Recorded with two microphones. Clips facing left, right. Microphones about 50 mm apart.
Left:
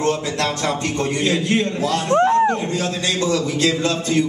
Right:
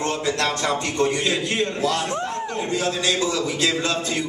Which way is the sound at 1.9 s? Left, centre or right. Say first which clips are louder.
Left 8 dB; left.